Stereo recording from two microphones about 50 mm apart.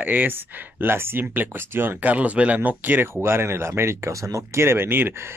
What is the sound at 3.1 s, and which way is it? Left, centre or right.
Speech, right.